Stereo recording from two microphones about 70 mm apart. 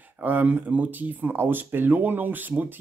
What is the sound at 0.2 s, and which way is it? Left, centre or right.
Speech, right.